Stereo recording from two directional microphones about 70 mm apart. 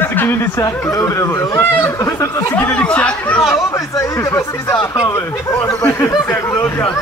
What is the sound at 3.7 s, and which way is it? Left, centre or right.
Speech, left.